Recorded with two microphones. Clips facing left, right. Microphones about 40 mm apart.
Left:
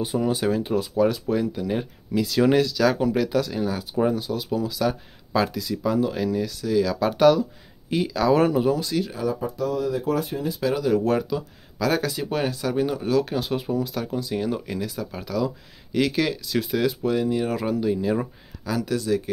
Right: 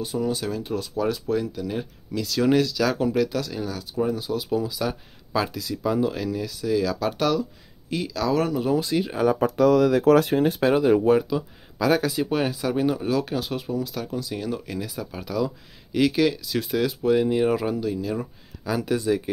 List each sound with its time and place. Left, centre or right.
0.0 s speech: left
0.7 s speech: centre
3.6 s speech: centre
4.2 s speech: centre
8.6 s speech: centre
9.3 s speech: right
10.6 s speech: right
11.0 s speech: centre
14.8 s speech: centre
17.1 s speech: centre
17.7 s speech: centre
18.8 s speech: centre